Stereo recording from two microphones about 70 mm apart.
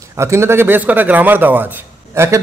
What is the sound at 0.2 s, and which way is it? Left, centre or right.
Speech, right.